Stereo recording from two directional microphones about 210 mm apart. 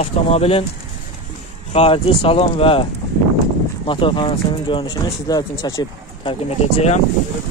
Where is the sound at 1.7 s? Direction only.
30° left (ahead or behind).